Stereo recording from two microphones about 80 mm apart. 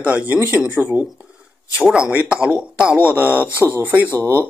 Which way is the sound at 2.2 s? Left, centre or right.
Centre.